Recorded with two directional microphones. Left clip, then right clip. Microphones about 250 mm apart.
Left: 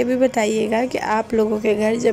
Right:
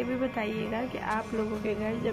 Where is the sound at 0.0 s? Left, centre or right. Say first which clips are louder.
Left 13 dB; left.